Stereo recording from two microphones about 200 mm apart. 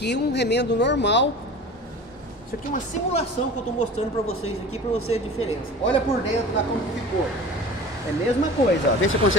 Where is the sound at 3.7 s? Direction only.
90° left.